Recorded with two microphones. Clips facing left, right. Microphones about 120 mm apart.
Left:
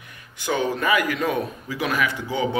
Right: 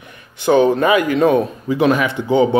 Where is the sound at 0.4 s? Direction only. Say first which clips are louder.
Right 11 dB; 25° right (ahead or behind).